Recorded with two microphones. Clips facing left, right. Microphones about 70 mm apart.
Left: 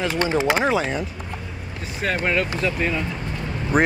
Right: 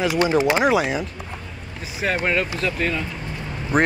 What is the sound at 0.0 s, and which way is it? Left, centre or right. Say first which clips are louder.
Speech: right 3 dB; centre.